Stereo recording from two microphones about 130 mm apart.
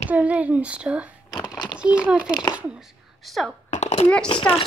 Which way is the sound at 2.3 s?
35° left (ahead or behind).